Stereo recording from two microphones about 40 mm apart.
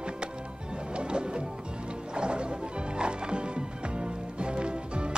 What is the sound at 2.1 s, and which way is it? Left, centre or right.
Music, right.